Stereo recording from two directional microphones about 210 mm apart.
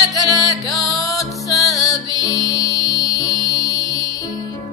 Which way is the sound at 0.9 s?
15° left (ahead or behind).